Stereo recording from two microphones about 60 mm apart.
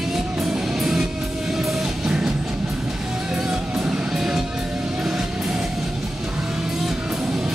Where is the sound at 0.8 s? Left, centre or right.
Centre.